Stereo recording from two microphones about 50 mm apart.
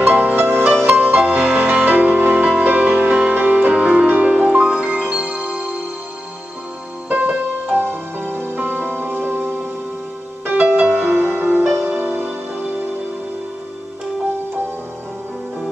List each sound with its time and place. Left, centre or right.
0.0 s music: right
7.1 s music: right
11.4 s music: right